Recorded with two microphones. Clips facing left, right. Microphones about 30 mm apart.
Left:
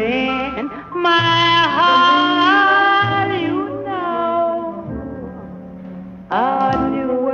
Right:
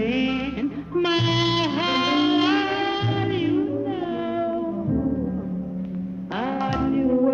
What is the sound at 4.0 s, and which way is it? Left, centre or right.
Music, left.